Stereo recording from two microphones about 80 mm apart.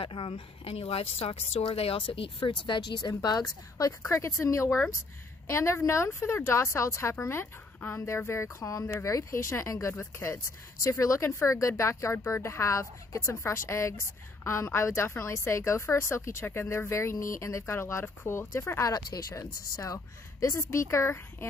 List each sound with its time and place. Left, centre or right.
1.7 s speech: left
2.6 s speech: left
3.1 s a woman's voice: left